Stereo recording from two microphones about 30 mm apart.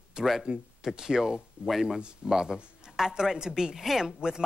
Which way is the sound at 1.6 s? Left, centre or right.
Right.